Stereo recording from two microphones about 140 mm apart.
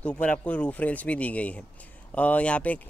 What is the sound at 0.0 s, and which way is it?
Speech, 10° left (ahead or behind).